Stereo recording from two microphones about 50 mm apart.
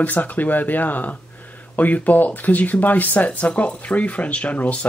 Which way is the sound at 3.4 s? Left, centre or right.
Left.